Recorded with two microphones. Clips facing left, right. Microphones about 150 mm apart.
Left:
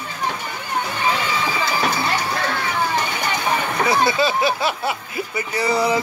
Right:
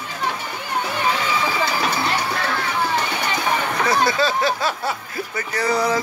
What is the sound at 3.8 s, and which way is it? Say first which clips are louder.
Speech: left 1 dB; centre (ahead or behind).